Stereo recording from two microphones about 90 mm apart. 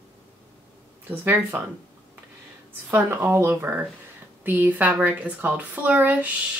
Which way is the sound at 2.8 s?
25° right (ahead or behind).